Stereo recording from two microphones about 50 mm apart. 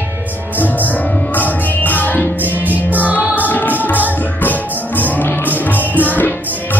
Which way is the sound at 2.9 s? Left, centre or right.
Right.